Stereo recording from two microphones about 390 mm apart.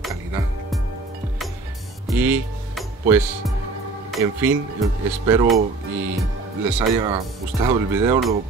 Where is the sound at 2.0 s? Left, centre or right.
Centre.